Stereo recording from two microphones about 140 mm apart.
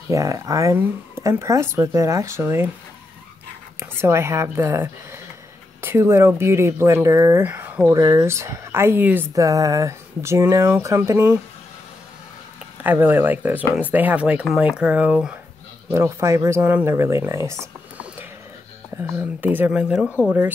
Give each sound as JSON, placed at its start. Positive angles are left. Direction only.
{"t": 0.1, "sound": "speech", "side_deg": -25}
{"t": 3.8, "sound": "speech", "side_deg": -20}
{"t": 12.8, "sound": "speech", "side_deg": -15}
{"t": 15.9, "sound": "speech", "side_deg": -20}
{"t": 18.9, "sound": "speech", "side_deg": -15}